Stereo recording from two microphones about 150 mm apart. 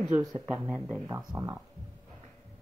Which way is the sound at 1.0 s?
20° right (ahead or behind).